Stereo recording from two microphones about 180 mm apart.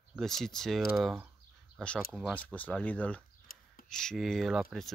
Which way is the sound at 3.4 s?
55° left (ahead or behind).